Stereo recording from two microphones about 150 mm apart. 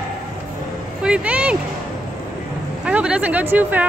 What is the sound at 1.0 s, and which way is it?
Speech, 5° right (ahead or behind).